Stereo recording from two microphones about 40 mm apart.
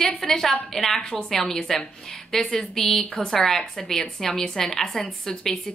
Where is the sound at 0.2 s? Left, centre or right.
Centre.